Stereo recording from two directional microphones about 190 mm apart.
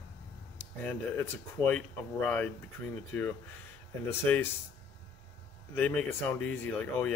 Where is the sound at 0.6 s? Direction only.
10° left (ahead or behind).